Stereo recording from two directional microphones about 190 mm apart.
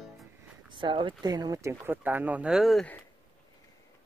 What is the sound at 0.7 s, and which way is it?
Speech, 25° right (ahead or behind).